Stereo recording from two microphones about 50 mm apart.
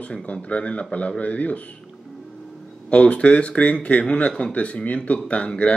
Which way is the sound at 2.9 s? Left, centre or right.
Left.